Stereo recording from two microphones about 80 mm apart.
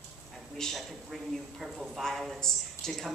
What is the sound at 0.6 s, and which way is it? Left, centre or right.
Speech, centre.